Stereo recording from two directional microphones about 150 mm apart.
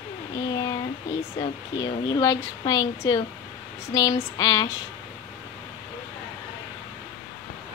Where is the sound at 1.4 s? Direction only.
30° left (ahead or behind).